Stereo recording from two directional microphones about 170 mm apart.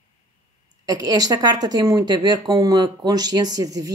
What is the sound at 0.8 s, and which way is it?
Speech, 25° right (ahead or behind).